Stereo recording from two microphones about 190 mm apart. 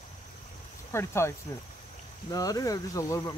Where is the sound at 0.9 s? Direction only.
15° left (ahead or behind).